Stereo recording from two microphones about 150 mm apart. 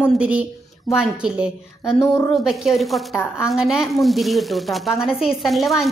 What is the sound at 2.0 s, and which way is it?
Speech, 20° left (ahead or behind).